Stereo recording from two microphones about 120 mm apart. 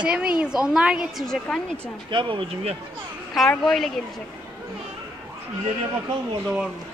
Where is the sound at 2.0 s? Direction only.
45° right (ahead or behind).